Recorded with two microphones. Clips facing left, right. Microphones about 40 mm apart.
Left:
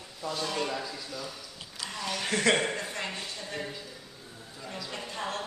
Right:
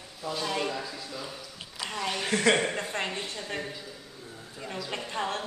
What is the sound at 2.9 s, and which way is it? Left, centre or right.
Speech, right.